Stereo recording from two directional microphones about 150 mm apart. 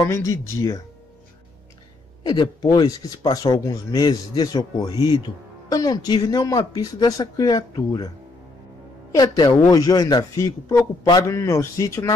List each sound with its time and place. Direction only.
0.1 s speech: 20° left (ahead or behind)
2.2 s speech: 25° left (ahead or behind)
9.1 s speech: 25° left (ahead or behind)